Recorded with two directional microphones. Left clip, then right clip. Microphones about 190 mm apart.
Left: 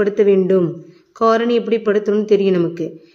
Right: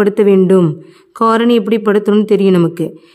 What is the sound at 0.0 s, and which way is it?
Speech, 50° right (ahead or behind).